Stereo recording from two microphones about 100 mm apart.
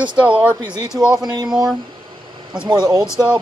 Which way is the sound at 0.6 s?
45° right (ahead or behind).